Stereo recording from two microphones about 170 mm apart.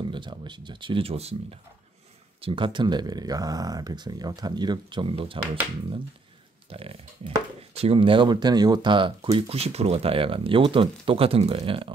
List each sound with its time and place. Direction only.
0.0 s speech: 30° right (ahead or behind)
6.7 s speech: 35° right (ahead or behind)